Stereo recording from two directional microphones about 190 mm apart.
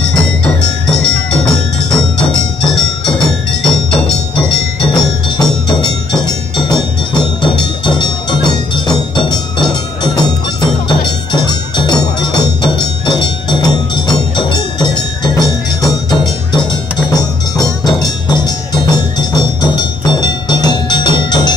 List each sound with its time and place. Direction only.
0.8 s music: 5° left (ahead or behind)
4.4 s music: 25° left (ahead or behind)